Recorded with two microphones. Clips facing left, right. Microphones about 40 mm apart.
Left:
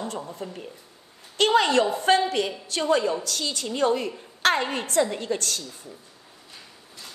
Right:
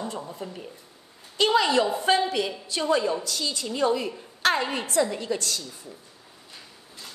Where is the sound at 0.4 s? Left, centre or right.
Centre.